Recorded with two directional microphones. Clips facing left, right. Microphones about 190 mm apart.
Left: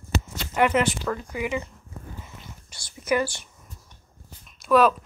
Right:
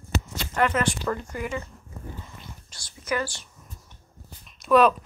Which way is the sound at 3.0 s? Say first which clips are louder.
Left 4 dB; 15° left (ahead or behind).